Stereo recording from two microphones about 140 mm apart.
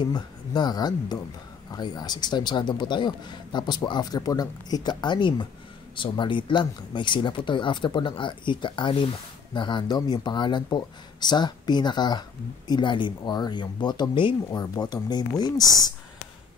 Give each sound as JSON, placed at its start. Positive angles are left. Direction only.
{"t": 0.0, "sound": "speech", "side_deg": 30}